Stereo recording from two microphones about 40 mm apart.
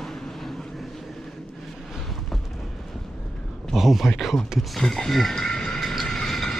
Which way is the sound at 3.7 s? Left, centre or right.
Centre.